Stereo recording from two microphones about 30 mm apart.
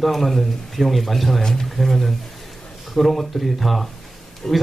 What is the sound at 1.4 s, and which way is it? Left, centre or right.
Speech, centre.